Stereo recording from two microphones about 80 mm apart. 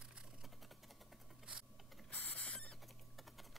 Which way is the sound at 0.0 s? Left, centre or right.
Centre.